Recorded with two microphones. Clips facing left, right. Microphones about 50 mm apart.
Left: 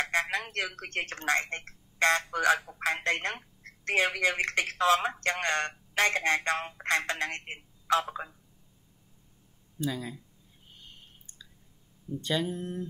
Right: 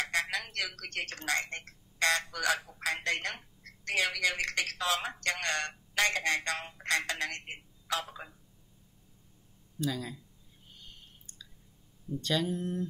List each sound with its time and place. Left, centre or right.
0.0 s speech: left
9.8 s speech: centre
10.8 s a sound: centre
12.2 s speech: centre